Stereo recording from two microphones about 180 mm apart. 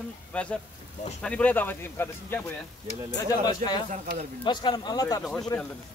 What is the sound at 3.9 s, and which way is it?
Speech, 45° right (ahead or behind).